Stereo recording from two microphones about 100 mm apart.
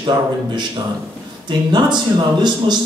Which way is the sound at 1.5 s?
50° right (ahead or behind).